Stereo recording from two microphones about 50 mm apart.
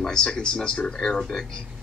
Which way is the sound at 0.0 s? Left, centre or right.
Centre.